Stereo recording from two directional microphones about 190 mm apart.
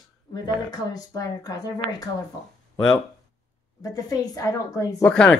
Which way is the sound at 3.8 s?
20° left (ahead or behind).